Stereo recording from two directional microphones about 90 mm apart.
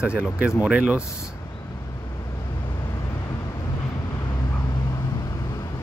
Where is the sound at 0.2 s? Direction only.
30° left (ahead or behind).